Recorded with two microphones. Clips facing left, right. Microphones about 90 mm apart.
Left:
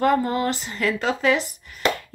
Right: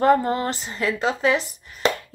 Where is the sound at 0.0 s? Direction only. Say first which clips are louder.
Right 2 dB; 30° right (ahead or behind).